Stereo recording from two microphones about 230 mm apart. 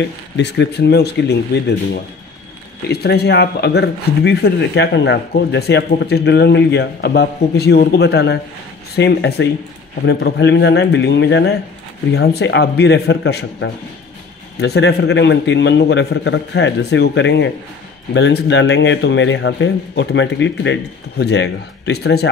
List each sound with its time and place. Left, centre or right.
0.4 s speech: left